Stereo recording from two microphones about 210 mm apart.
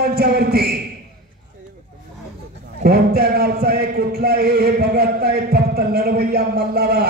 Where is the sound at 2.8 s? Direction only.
50° right (ahead or behind).